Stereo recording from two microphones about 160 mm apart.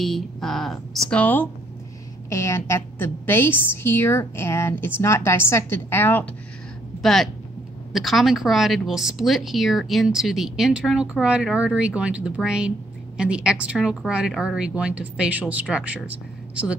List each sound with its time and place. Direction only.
0.0 s a woman's voice: centre (ahead or behind)
7.0 s a woman's voice: centre (ahead or behind)